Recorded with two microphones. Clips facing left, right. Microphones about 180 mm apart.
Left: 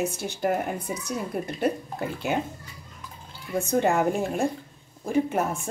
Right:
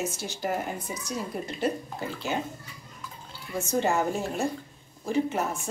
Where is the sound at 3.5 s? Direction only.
55° left (ahead or behind).